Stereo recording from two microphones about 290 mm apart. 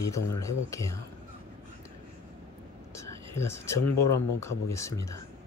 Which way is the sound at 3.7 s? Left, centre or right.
Left.